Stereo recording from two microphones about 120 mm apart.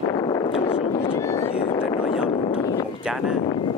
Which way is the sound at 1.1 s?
25° left (ahead or behind).